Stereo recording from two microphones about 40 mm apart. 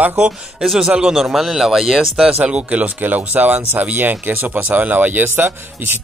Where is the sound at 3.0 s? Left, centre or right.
Right.